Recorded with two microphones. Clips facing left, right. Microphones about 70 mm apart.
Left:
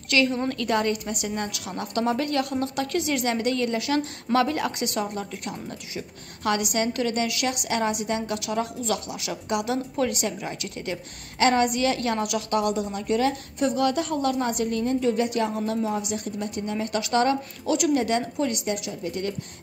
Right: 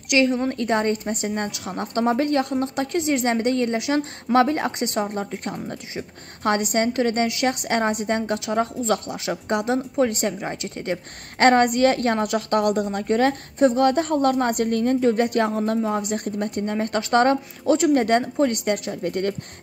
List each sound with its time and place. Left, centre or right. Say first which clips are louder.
0.1 s a woman's voice: right 3 dB; right